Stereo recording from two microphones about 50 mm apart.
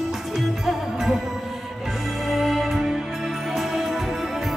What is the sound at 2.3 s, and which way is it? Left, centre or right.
Music, centre.